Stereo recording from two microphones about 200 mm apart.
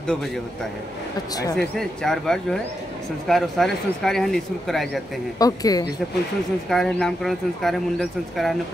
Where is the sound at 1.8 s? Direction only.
5° left (ahead or behind).